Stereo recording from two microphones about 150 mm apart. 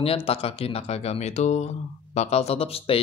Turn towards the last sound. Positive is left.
turn(degrees=40)  # may be behind; listen again after turning